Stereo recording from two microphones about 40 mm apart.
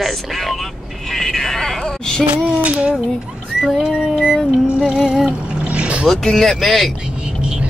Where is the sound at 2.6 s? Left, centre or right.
Right.